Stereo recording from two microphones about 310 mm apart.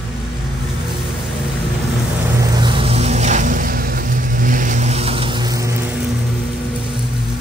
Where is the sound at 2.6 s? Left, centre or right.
Centre.